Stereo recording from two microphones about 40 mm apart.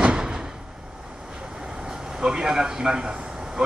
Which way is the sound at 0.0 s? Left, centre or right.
Right.